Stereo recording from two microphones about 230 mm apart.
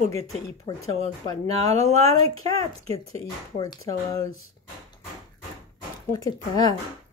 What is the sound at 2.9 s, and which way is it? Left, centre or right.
Speech, centre.